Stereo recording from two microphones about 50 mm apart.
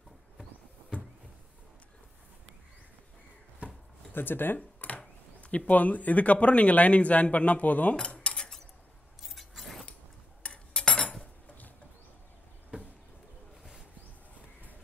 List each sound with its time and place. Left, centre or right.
3.6 s chopping: right
4.1 s speech: left
4.6 s a sound: left
5.4 s speech: left
7.9 s cutlery: centre
9.2 s a sound: centre
10.4 s cutlery: centre